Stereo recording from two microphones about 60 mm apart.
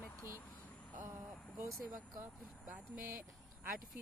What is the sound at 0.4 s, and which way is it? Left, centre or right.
Vehicle, left.